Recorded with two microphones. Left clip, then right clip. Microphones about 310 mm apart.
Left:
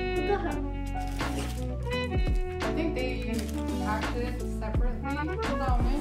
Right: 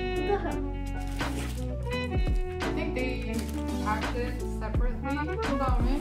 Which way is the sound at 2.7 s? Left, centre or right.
Centre.